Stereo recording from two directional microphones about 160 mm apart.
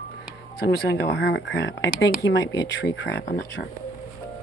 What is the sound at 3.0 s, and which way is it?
Speech, 90° left.